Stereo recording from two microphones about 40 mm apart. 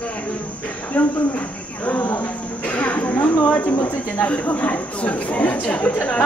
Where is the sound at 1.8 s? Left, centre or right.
Left.